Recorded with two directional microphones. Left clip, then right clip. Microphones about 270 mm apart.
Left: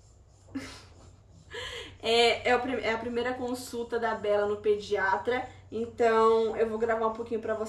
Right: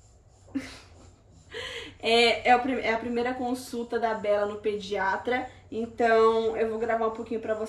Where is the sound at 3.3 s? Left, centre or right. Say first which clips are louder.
Right 2 dB; centre.